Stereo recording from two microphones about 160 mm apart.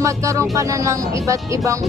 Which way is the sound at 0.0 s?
20° right (ahead or behind).